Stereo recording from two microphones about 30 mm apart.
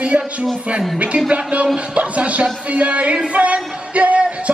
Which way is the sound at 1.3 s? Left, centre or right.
Right.